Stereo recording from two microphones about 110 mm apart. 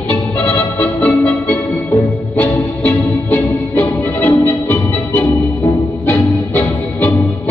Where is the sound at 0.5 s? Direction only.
15° left (ahead or behind).